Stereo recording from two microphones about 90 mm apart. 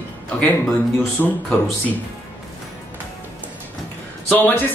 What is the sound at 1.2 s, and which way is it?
Speech, 20° left (ahead or behind).